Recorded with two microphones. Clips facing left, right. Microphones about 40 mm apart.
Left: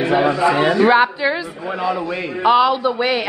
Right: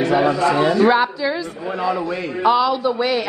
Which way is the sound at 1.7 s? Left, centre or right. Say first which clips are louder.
Even; centre.